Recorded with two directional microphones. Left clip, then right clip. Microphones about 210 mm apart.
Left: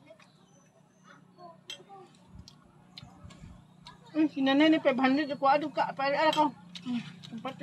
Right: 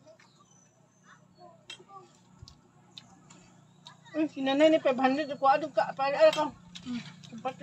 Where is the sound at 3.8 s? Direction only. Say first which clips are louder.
Left 2 dB; 10° right (ahead or behind).